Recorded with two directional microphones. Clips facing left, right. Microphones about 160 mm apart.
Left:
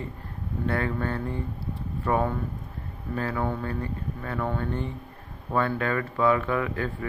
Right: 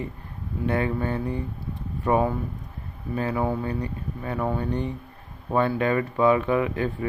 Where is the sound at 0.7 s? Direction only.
15° right (ahead or behind).